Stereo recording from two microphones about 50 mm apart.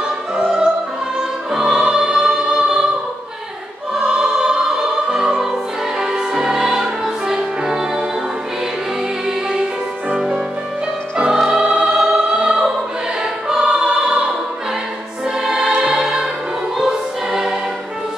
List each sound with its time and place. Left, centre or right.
0.5 s music: centre
3.9 s music: centre
10.1 s music: centre
13.2 s choir: centre
15.6 s music: centre